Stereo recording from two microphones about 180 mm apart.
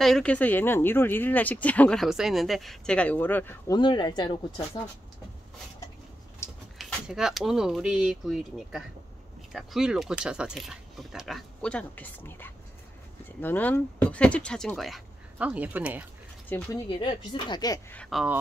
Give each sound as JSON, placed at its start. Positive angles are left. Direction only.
{"t": 0.0, "sound": "speech", "side_deg": 5}
{"t": 3.7, "sound": "speech", "side_deg": 25}
{"t": 6.4, "sound": "a sound", "side_deg": 15}
{"t": 6.8, "sound": "speech", "side_deg": -5}
{"t": 16.5, "sound": "speech", "side_deg": 10}
{"t": 17.0, "sound": "speech", "side_deg": 25}
{"t": 18.1, "sound": "speech", "side_deg": 0}